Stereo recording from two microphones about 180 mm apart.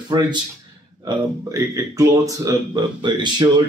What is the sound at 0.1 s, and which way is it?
Speech, 25° right (ahead or behind).